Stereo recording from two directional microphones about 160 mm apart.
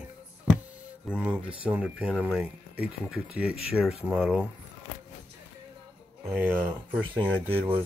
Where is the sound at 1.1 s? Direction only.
10° right (ahead or behind).